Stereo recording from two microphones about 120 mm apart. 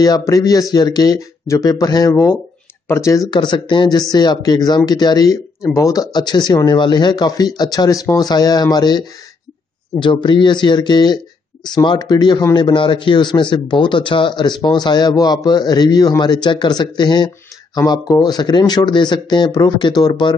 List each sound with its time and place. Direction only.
0.0 s a man's voice: 30° left (ahead or behind)
3.3 s a man's voice: 40° left (ahead or behind)